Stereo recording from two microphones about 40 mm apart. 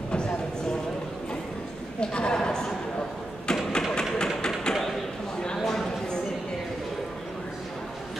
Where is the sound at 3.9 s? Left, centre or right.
Centre.